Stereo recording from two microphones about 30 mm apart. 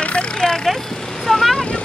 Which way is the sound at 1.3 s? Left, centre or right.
Centre.